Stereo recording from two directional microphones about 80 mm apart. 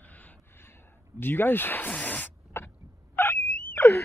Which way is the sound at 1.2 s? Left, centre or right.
Left.